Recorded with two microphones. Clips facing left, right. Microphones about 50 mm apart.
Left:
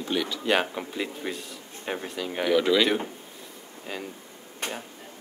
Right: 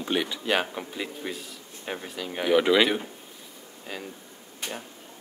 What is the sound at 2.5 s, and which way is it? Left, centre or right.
Speech, centre.